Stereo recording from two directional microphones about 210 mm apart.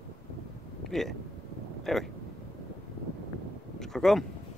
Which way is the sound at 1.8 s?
Centre (ahead or behind).